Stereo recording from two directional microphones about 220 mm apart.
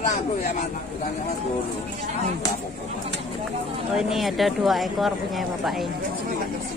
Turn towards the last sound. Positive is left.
turn(degrees=0)  # may be behind; listen again after turning